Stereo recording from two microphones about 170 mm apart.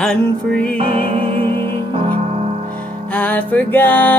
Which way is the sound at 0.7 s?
35° right (ahead or behind).